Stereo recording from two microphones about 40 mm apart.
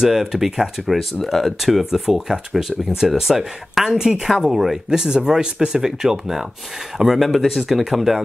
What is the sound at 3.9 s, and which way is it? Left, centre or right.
Speech, centre.